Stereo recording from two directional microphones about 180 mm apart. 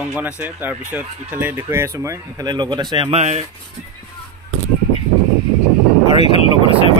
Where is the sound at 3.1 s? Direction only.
35° right (ahead or behind).